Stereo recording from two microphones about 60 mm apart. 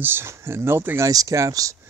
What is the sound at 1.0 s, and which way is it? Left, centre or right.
Speech, right.